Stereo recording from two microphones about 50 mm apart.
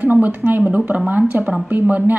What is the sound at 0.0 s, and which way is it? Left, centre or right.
Speech, right.